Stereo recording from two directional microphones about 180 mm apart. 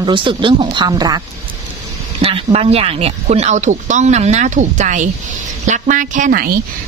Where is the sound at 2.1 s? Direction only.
35° right (ahead or behind).